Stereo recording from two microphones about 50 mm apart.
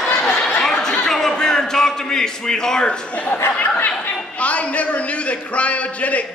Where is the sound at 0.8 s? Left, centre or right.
Centre.